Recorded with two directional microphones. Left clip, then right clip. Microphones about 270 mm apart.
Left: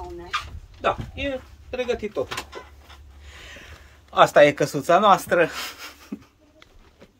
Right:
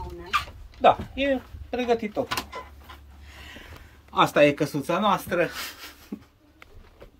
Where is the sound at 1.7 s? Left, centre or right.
Centre.